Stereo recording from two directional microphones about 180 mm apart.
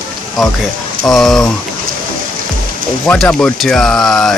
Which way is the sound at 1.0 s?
Centre (ahead or behind).